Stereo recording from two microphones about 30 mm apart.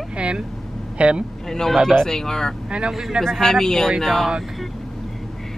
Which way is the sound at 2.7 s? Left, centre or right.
Right.